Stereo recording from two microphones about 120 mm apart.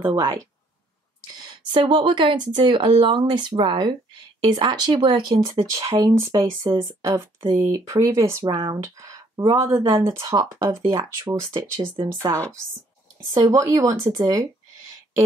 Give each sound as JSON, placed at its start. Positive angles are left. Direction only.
{"t": 0.0, "sound": "speech", "side_deg": -25}
{"t": 1.5, "sound": "speech", "side_deg": -40}
{"t": 8.5, "sound": "speech", "side_deg": -35}
{"t": 11.3, "sound": "speech", "side_deg": -25}